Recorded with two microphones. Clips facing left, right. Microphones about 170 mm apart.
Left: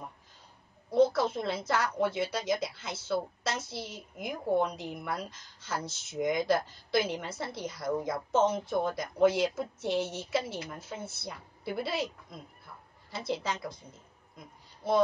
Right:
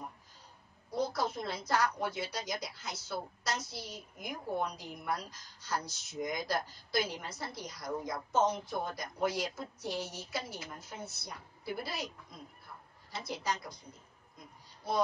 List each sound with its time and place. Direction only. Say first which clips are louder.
0.9 s a woman's voice: left 9 dB; 25° left (ahead or behind)
13.1 s a woman's voice: left 4 dB; 25° left (ahead or behind)